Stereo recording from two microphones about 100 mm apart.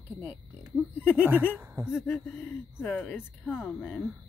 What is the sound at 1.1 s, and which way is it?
Speech, 20° right (ahead or behind).